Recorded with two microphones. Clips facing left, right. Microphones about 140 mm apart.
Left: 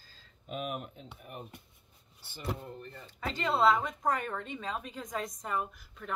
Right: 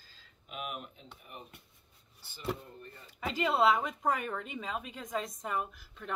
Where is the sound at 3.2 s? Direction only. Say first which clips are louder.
Even; 5° right (ahead or behind).